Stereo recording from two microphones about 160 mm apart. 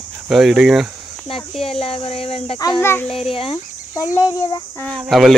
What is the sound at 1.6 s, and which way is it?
Speech, 35° left (ahead or behind).